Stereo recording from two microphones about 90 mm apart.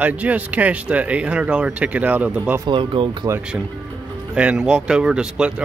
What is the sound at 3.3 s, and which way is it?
Speech, 35° right (ahead or behind).